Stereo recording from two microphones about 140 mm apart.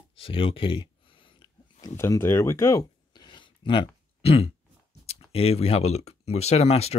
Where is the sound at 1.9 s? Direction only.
20° left (ahead or behind); by 4.5 s 45° left (ahead or behind).